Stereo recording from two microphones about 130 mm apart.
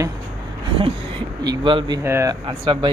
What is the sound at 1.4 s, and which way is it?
Speech, 40° right (ahead or behind).